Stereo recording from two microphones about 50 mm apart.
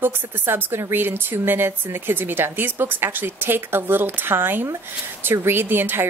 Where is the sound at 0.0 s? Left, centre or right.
Right.